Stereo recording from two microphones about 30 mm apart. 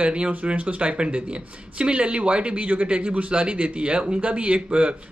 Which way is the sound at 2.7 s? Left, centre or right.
Right.